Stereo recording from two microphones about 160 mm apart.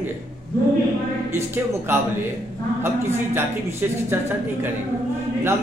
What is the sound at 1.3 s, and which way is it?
A man's voice, 15° right (ahead or behind).